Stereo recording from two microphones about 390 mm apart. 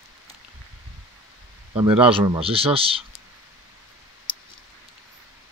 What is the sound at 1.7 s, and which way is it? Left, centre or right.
Speech, centre.